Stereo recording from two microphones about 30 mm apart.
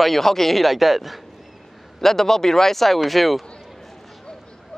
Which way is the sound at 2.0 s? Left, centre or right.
Centre.